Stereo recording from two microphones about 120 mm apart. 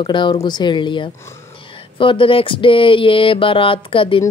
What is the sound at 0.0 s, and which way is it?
Speech, 40° left (ahead or behind).